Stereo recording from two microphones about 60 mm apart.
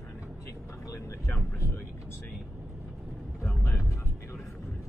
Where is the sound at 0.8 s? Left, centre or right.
Left.